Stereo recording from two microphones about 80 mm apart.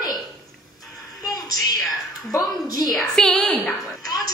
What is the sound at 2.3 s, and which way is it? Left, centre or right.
Speech, left.